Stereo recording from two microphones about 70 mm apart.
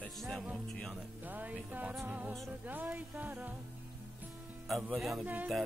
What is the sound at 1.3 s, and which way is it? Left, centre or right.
Music, right.